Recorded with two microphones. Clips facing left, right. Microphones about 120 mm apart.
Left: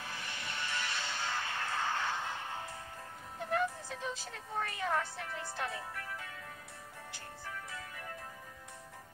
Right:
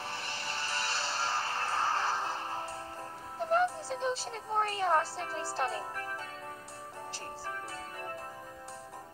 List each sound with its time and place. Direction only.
0.0 s music: 35° right (ahead or behind)
3.3 s speech: 35° right (ahead or behind)
7.1 s music: 35° right (ahead or behind)